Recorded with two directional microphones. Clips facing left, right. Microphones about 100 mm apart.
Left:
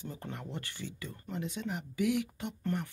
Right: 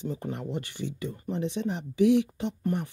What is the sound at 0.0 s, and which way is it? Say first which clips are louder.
Speech: right 9 dB; 20° right (ahead or behind).